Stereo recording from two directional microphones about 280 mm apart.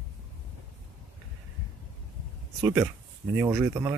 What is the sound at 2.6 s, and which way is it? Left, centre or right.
Speech, centre.